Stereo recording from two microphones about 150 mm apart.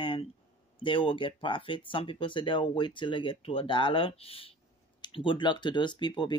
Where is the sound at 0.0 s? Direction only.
35° left (ahead or behind).